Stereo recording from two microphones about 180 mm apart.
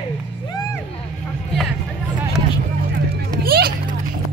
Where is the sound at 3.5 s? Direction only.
60° right (ahead or behind).